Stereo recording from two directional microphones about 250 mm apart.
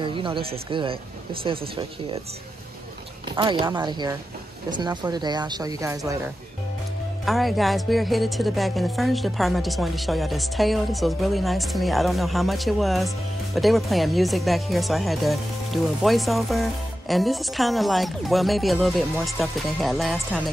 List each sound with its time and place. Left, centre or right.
0.0 s speech: right
3.3 s speech: centre
7.2 s a woman's voice: centre